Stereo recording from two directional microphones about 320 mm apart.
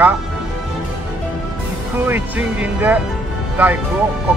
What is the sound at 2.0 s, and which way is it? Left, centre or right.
Speech, centre.